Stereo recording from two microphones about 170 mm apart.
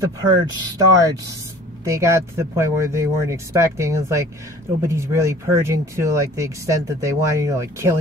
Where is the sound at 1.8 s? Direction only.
20° right (ahead or behind).